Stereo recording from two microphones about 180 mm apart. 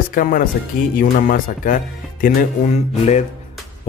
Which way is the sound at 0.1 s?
50° left (ahead or behind).